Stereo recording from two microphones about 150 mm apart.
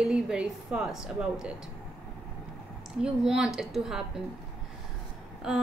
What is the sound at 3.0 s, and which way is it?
A woman's voice, 5° right (ahead or behind).